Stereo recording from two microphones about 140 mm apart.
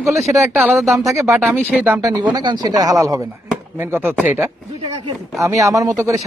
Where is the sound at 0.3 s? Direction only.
20° right (ahead or behind).